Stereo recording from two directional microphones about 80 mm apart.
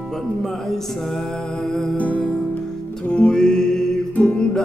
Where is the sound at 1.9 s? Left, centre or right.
Centre.